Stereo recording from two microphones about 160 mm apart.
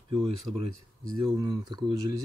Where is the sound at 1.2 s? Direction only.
25° right (ahead or behind).